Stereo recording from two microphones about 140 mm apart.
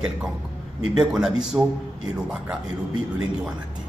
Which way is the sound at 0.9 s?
5° right (ahead or behind).